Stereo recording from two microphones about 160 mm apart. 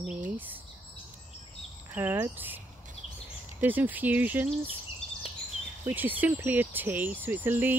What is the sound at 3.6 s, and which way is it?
Speech, 10° right (ahead or behind).